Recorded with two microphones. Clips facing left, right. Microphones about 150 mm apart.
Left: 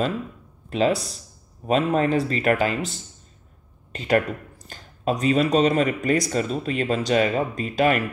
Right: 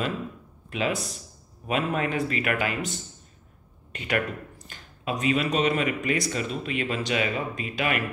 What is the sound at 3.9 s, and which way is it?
Speech, 35° left (ahead or behind).